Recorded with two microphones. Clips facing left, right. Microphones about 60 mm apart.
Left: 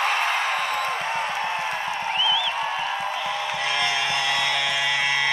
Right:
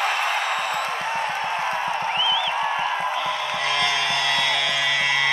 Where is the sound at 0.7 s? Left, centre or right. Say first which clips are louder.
Even; right.